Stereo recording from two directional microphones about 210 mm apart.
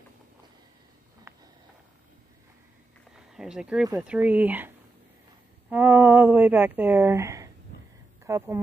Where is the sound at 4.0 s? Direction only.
5° right (ahead or behind).